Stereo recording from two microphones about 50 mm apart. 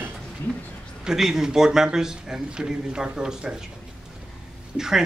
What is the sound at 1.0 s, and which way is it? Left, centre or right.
Speech, centre.